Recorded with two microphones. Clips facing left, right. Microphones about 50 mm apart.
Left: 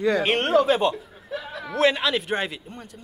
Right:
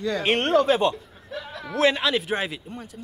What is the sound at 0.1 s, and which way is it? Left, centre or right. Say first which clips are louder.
Speech: right 1 dB; centre.